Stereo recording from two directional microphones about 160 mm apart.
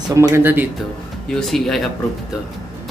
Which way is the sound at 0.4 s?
10° right (ahead or behind).